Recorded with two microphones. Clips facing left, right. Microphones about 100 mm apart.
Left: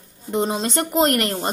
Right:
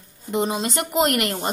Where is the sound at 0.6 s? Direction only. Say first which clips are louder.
Left 2 dB; 35° left (ahead or behind).